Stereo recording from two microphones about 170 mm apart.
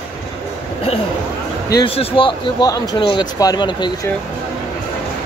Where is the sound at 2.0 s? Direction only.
30° left (ahead or behind).